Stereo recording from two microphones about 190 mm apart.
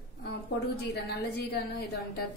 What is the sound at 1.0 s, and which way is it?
Speech, 60° left (ahead or behind).